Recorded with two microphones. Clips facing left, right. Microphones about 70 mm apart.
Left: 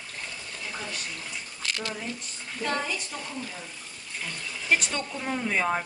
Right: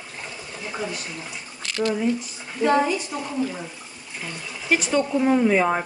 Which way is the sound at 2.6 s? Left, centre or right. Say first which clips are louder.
Right 10 dB; centre.